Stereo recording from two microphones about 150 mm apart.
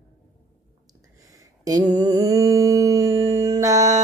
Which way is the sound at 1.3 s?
25° right (ahead or behind).